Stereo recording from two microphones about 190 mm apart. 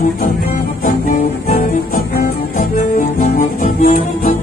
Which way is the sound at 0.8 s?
45° left (ahead or behind).